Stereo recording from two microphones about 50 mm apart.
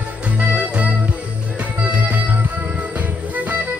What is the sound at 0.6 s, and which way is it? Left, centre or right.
Music, right.